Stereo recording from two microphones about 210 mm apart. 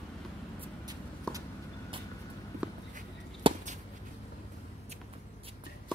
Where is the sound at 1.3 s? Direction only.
5° left (ahead or behind).